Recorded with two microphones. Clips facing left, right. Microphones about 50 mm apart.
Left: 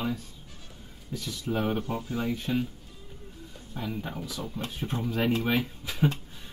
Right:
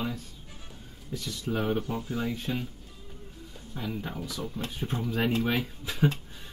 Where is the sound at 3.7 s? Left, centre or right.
Centre.